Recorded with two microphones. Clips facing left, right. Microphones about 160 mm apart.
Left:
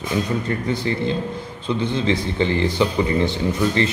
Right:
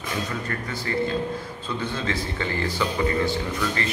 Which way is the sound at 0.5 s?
20° left (ahead or behind).